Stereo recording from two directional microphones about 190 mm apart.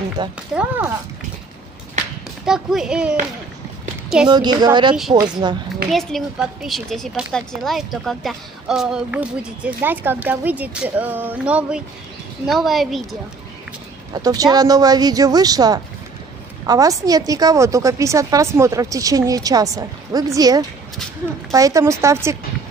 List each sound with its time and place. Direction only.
0.2 s speech: 25° right (ahead or behind)
0.6 s a woman's voice: 10° right (ahead or behind)
2.4 s a woman's voice: 5° right (ahead or behind)
4.3 s speech: 20° right (ahead or behind)
5.9 s a woman's voice: centre (ahead or behind)
14.1 s a woman's voice: 20° right (ahead or behind)